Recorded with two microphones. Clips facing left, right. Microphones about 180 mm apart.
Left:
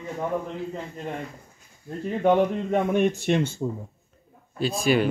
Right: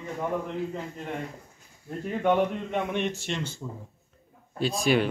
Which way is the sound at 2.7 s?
45° left (ahead or behind).